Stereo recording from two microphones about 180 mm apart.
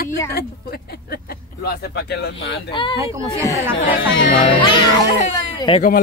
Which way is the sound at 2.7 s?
25° left (ahead or behind).